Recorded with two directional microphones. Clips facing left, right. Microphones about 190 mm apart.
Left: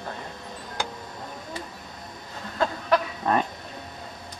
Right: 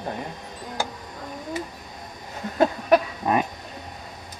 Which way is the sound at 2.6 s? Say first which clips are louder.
Right 5 dB; 15° right (ahead or behind).